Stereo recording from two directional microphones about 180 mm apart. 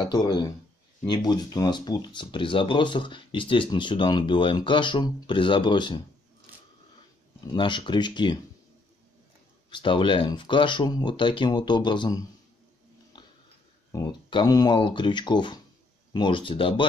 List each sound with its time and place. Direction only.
0.0 s speech: 25° left (ahead or behind)
7.5 s speech: 25° left (ahead or behind)
9.7 s speech: 25° left (ahead or behind)
13.9 s speech: 25° left (ahead or behind)